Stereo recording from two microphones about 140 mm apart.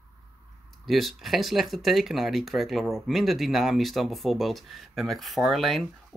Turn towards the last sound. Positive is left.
turn(degrees=0)  # may be behind; listen again after turning